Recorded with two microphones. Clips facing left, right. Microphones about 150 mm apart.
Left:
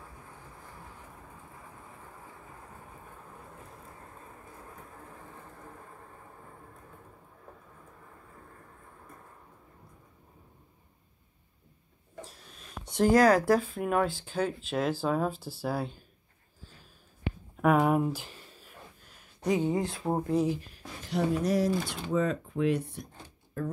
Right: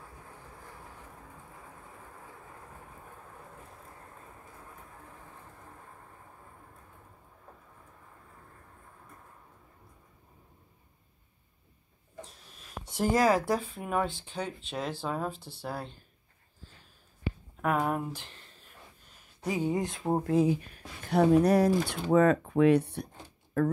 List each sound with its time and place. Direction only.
12.2 s speech: centre (ahead or behind)
17.6 s a sound: 10° left (ahead or behind)
19.4 s speech: 5° right (ahead or behind)
20.2 s speech: 55° right (ahead or behind)